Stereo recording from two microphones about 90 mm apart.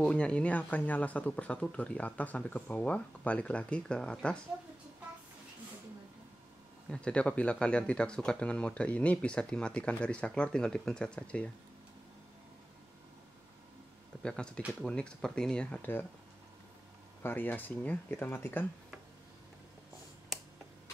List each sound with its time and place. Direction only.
0.0 s speech: 10° left (ahead or behind)
6.9 s speech: 10° left (ahead or behind)
14.2 s speech: 10° left (ahead or behind)
17.2 s speech: 20° left (ahead or behind)